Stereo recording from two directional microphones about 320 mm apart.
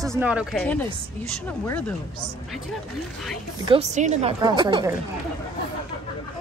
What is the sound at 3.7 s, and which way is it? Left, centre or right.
A woman's voice, right.